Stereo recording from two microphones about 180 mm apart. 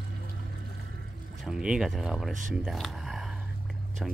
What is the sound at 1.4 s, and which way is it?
Speech, 5° right (ahead or behind).